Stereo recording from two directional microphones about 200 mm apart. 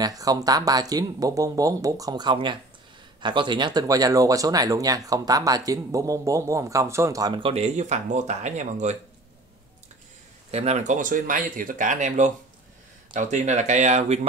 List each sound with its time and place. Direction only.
0.0 s speech: 20° right (ahead or behind); by 8.9 s 35° right (ahead or behind)
10.5 s speech: 30° right (ahead or behind)